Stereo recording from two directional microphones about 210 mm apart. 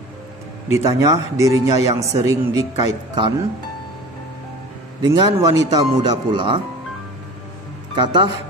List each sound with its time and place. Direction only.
0.7 s speech: 15° right (ahead or behind)
5.0 s speech: 15° right (ahead or behind)
7.9 s speech: 20° right (ahead or behind)